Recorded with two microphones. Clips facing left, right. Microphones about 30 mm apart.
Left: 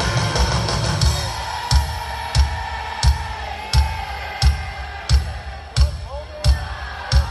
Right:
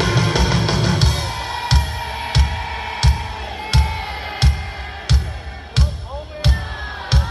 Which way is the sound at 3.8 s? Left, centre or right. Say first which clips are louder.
Right 1 dB; right.